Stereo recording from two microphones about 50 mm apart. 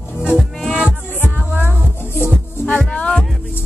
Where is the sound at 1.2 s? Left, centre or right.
Left.